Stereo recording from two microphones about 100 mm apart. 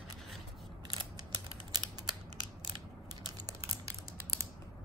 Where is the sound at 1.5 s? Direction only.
45° right (ahead or behind).